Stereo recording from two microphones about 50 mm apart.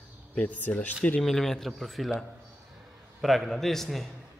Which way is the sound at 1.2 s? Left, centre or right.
Centre.